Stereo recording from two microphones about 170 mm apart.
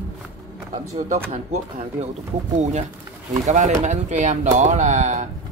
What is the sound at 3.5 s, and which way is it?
Speech, 45° right (ahead or behind).